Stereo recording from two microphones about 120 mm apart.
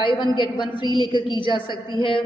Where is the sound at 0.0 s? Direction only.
40° left (ahead or behind).